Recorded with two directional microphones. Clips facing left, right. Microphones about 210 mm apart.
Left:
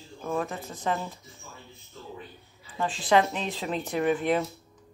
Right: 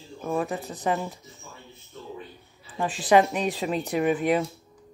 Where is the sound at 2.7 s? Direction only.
15° right (ahead or behind).